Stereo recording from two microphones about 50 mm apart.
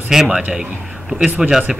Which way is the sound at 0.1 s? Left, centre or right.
Centre.